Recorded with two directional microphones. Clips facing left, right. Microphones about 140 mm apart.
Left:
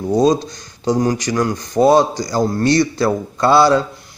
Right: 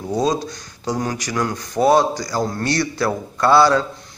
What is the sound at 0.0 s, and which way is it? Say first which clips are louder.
Speech: left 6 dB; 15° left (ahead or behind).